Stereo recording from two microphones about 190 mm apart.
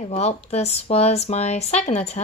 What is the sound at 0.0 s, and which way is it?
Speech, 35° left (ahead or behind).